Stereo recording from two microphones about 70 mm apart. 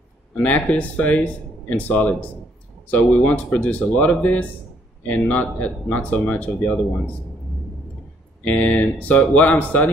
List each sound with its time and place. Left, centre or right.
0.4 s speech: left
8.5 s speech: left